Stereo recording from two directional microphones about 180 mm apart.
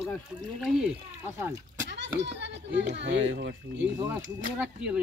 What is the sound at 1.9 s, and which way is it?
A child's voice, 75° right (ahead or behind).